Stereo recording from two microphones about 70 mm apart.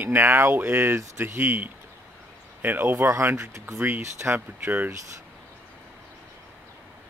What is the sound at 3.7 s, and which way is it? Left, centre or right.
Speech, right.